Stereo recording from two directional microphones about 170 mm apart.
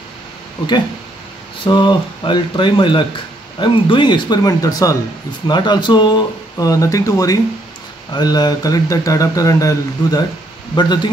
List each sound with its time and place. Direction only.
1.6 s speech: 25° left (ahead or behind)